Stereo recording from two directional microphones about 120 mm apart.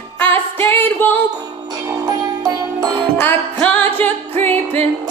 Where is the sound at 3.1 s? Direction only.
15° left (ahead or behind).